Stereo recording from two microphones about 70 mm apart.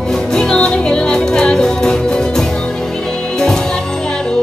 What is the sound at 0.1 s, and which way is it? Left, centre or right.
Music, centre.